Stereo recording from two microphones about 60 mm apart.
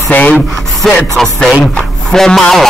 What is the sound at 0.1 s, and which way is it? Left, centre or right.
Speech, left.